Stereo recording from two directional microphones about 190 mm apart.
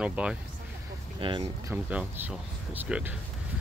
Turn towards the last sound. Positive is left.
turn(degrees=-10)  # may be behind; listen again after turning